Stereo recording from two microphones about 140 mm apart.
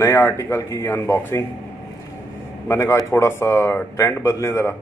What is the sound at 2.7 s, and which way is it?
A man's voice, 20° left (ahead or behind).